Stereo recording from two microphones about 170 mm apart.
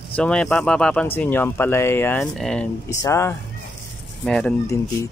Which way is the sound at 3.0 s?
15° left (ahead or behind).